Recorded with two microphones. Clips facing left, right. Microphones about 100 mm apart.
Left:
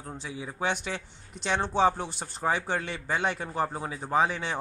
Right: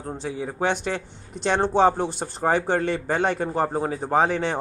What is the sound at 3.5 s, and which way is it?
Speech, 35° right (ahead or behind).